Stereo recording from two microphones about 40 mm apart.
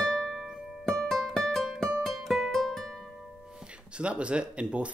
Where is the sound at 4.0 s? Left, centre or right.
Right.